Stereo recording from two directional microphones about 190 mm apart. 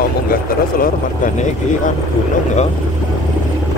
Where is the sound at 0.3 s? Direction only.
50° left (ahead or behind).